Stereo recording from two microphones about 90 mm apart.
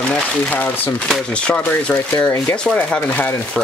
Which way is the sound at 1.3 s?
10° left (ahead or behind).